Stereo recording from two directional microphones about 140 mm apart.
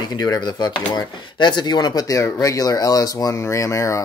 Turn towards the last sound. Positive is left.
turn(degrees=20)  # may be behind; listen again after turning